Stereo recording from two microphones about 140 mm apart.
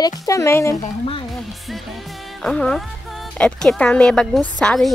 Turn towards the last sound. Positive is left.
turn(degrees=5)  # may be behind; listen again after turning